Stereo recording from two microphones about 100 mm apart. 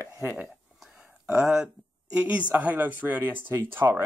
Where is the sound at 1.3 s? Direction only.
5° right (ahead or behind).